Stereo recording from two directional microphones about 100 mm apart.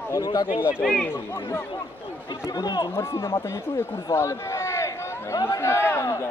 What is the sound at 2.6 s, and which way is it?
Speech, 40° left (ahead or behind).